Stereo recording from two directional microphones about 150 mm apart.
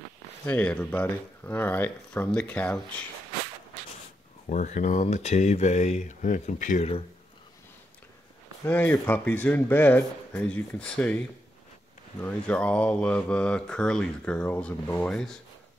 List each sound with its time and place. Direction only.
0.5 s speech: 10° left (ahead or behind)
4.5 s speech: 55° left (ahead or behind)
8.6 s speech: 10° left (ahead or behind)